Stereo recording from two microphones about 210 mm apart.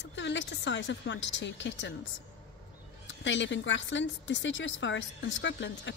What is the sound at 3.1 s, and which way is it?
A woman's voice, 60° left (ahead or behind).